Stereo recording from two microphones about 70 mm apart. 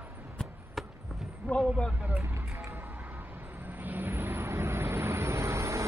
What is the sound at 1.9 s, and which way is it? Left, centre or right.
Speech, centre.